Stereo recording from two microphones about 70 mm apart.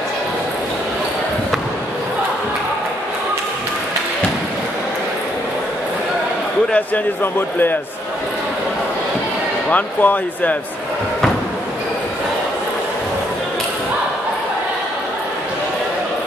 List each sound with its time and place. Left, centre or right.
9.7 s speech: left